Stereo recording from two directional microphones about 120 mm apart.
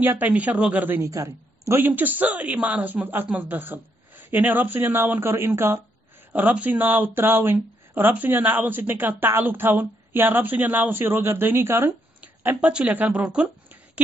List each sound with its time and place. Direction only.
0.0 s a woman's voice: 15° right (ahead or behind)